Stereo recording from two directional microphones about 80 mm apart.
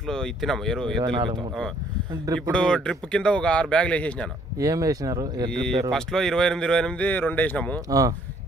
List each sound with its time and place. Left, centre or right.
0.0 s speech: centre
1.0 s speech: right
2.5 s speech: centre
4.6 s speech: right
5.5 s speech: centre